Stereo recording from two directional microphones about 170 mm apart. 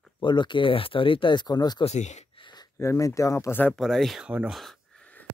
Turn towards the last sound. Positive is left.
turn(degrees=0)  # may be behind; listen again after turning